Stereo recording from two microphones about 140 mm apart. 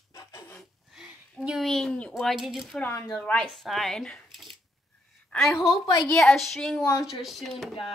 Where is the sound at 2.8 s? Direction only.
15° left (ahead or behind); by 7.5 s centre (ahead or behind).